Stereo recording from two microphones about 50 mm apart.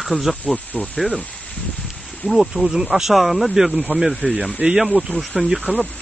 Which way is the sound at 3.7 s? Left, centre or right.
Right.